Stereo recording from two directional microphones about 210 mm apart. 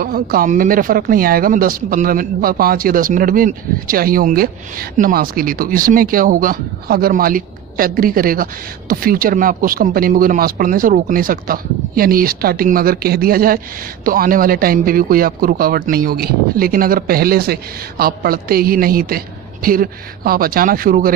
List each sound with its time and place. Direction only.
0.0 s speech: 45° right (ahead or behind)